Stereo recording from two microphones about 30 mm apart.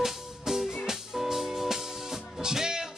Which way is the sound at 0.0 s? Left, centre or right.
Centre.